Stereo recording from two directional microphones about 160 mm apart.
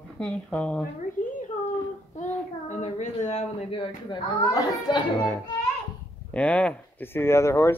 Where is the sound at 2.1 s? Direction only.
50° left (ahead or behind); by 5.3 s 25° left (ahead or behind).